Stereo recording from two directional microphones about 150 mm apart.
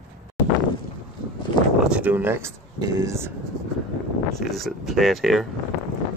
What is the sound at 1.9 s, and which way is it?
Speech, 10° right (ahead or behind).